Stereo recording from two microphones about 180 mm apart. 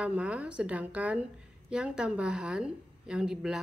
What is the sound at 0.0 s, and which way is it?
A woman's voice, 5° right (ahead or behind).